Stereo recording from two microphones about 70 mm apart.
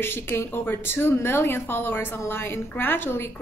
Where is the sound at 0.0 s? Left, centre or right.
Left.